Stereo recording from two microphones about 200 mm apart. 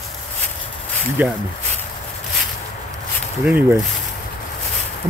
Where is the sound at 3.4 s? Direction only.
10° right (ahead or behind).